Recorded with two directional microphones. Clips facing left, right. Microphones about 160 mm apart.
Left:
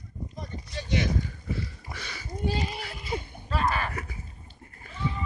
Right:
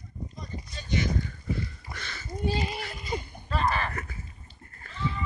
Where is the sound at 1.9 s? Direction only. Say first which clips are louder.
Left 1 dB; 10° left (ahead or behind).